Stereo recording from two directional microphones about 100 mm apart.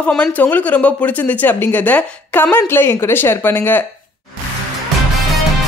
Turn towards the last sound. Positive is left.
turn(degrees=20)  # may be behind; listen again after turning